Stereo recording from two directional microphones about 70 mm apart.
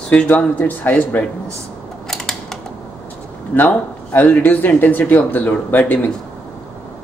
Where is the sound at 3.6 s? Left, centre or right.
Left.